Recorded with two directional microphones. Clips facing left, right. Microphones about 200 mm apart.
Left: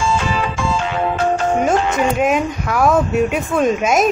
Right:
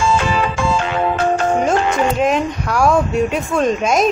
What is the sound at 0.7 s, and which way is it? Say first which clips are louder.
Music: right 1 dB; 65° right (ahead or behind).